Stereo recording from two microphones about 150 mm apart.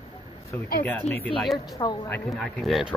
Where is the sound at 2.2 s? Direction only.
Centre (ahead or behind).